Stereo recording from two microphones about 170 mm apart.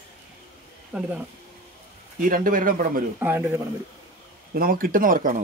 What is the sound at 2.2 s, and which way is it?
Speech, 55° right (ahead or behind).